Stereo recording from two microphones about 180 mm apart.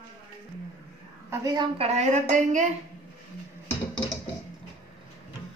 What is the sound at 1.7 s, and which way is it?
Speech, 35° right (ahead or behind).